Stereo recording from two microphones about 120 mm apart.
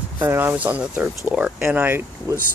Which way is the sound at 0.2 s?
20° right (ahead or behind).